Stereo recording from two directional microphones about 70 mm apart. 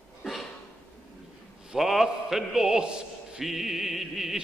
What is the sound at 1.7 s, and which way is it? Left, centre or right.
A man's voice, centre.